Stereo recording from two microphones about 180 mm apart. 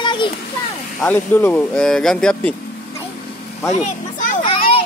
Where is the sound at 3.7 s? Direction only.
45° left (ahead or behind).